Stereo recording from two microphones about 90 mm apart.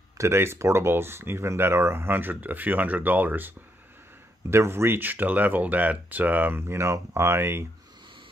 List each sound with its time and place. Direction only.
0.2 s speech: 30° right (ahead or behind)